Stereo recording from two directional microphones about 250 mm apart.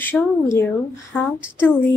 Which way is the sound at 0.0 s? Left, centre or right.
Centre.